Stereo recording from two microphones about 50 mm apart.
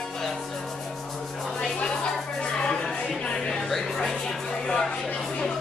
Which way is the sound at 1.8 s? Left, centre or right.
Left.